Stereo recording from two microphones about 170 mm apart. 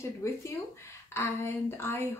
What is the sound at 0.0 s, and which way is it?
Speech, 15° left (ahead or behind).